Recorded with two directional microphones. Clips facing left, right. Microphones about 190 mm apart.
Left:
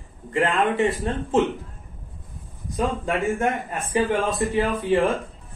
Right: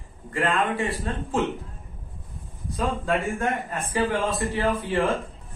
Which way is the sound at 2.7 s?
15° left (ahead or behind).